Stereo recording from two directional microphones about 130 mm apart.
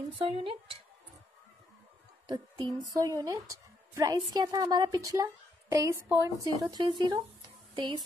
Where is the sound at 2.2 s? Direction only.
30° right (ahead or behind).